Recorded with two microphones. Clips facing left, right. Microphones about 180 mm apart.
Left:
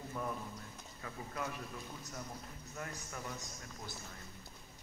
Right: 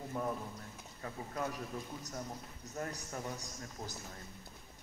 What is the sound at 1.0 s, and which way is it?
Speech, 35° right (ahead or behind).